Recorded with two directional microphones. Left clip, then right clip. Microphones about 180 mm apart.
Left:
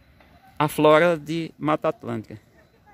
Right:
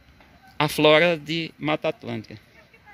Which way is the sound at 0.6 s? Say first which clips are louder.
Even; 5° left (ahead or behind).